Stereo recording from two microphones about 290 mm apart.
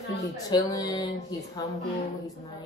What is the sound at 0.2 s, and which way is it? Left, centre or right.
Speech, centre.